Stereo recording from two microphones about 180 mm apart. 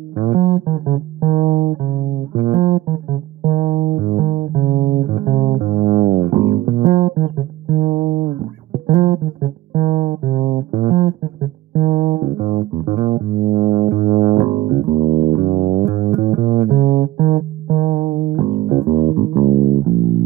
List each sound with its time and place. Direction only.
0.2 s music: 45° right (ahead or behind)
5.1 s music: 45° right (ahead or behind)
14.6 s bass guitar: 40° right (ahead or behind)
15.0 s music: 35° right (ahead or behind)